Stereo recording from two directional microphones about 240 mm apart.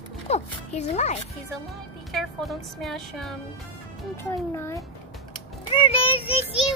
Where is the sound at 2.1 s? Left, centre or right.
Centre.